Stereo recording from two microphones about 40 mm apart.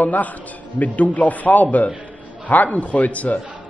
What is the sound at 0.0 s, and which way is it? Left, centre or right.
A man's voice, left.